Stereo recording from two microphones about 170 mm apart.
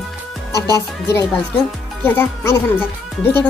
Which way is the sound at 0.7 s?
15° left (ahead or behind).